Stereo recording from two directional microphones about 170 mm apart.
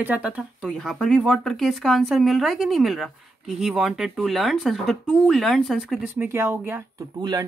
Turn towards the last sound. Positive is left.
turn(degrees=-25)  # may be behind; listen again after turning